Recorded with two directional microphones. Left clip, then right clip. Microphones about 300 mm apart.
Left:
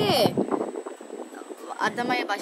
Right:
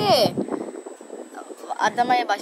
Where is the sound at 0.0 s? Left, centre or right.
Centre.